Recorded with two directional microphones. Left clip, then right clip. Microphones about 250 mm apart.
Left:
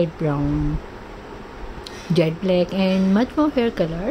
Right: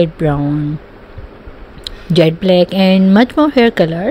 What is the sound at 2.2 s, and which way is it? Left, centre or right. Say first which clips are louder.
A woman's voice: right 9 dB; right.